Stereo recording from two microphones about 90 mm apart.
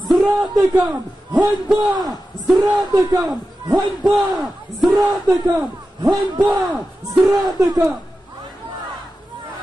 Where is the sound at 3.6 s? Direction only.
50° right (ahead or behind).